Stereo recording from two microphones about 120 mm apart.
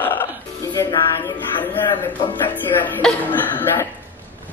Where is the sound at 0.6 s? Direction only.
30° left (ahead or behind).